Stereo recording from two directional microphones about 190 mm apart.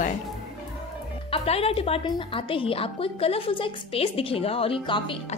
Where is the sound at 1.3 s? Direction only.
30° left (ahead or behind).